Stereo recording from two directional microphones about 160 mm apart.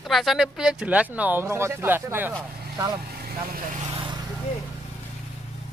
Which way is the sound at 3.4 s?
65° right (ahead or behind).